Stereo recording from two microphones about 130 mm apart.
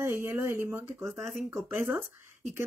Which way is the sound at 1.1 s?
Centre (ahead or behind).